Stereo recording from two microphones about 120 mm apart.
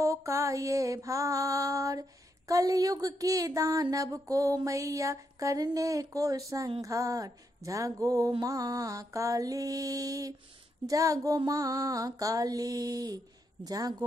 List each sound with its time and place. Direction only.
0.0 s mantra: 25° right (ahead or behind)
10.9 s female singing: 30° right (ahead or behind)